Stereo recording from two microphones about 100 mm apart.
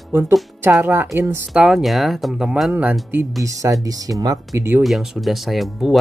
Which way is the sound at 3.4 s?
35° right (ahead or behind).